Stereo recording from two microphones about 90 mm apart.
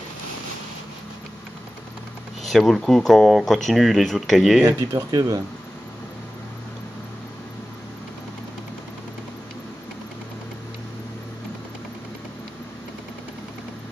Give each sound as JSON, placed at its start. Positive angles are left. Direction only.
{"t": 2.4, "sound": "speech", "side_deg": 0}
{"t": 4.6, "sound": "speech", "side_deg": -40}